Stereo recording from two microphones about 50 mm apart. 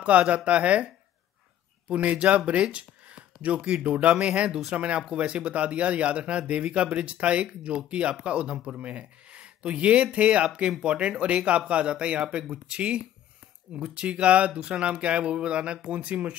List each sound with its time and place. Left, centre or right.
0.0 s speech: right
4.5 s speech: centre
4.7 s speech: right